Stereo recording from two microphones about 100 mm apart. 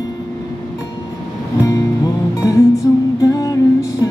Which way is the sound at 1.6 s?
35° left (ahead or behind).